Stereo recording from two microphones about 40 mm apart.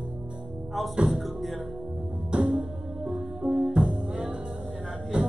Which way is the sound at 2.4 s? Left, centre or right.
Centre.